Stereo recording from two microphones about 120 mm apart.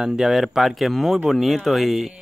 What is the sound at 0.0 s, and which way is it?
Speech, 5° right (ahead or behind).